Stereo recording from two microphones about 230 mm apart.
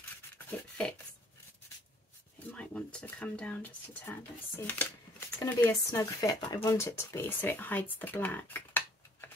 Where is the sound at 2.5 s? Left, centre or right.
Centre.